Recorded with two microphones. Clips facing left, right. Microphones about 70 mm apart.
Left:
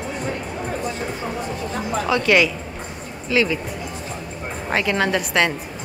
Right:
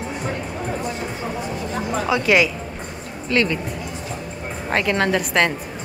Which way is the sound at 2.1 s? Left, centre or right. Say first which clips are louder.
Even; centre.